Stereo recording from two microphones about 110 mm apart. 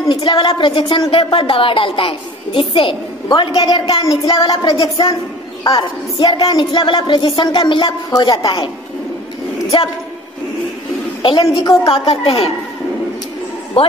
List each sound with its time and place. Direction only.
0.1 s a woman's voice: 45° left (ahead or behind)
11.4 s a woman's voice: 35° left (ahead or behind)
11.9 s a woman's voice: 55° left (ahead or behind)
13.8 s a man's voice: 60° left (ahead or behind)